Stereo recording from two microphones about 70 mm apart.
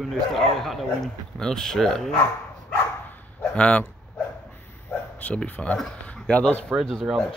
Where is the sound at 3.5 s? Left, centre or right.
Centre.